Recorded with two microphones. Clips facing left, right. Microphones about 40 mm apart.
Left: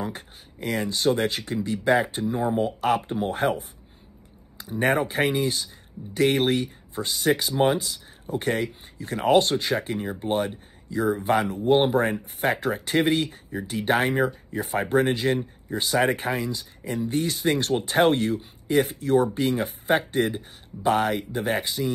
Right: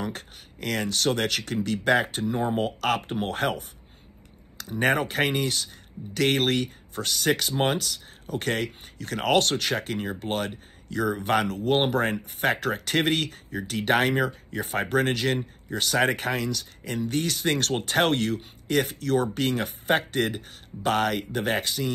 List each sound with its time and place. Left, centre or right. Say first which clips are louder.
0.0 s speech: left 1 dB; right
4.7 s speech: left 1 dB; right
10.9 s speech: left 2 dB; right
12.0 s speech: left 1 dB; right
13.2 s speech: left 2 dB; right